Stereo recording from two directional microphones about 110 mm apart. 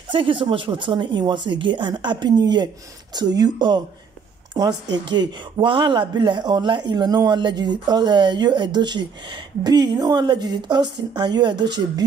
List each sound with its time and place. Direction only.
0.1 s a woman's voice: 50° right (ahead or behind)